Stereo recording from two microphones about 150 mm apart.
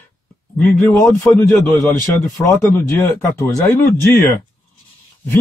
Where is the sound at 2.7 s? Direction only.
20° left (ahead or behind).